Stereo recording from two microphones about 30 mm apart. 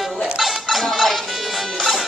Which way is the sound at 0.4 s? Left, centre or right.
Centre.